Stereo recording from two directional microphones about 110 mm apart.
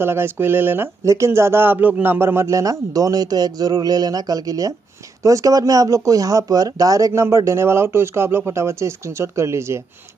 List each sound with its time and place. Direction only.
0.0 s speech: 20° right (ahead or behind)